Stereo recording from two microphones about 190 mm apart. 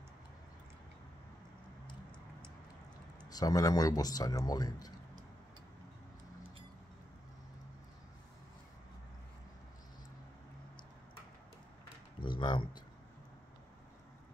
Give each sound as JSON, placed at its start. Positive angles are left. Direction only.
{"t": 3.3, "sound": "speech", "side_deg": 20}
{"t": 12.2, "sound": "speech", "side_deg": 25}